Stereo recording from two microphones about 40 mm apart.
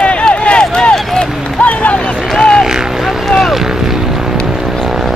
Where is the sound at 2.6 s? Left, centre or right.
Centre.